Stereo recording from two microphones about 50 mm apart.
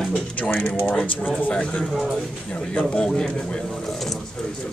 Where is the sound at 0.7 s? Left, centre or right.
Left; by 3.3 s centre.